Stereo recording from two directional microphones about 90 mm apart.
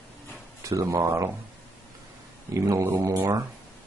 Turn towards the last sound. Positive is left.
turn(degrees=-30)  # may be behind; listen again after turning